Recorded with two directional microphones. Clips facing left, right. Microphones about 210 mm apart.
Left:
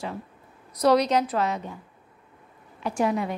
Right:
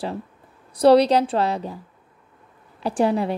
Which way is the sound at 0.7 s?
30° right (ahead or behind).